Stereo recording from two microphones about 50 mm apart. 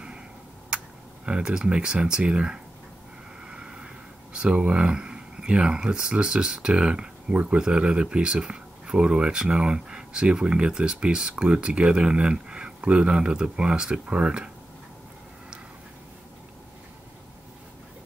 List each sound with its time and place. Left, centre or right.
1.2 s speech: centre